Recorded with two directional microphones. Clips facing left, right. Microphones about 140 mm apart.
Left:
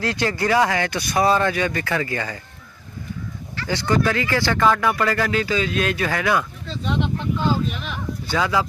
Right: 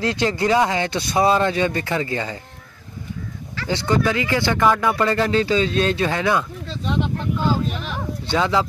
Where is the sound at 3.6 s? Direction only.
20° right (ahead or behind).